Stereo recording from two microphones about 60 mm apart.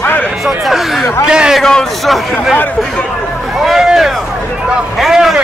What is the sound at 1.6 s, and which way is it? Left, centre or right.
Speech, centre.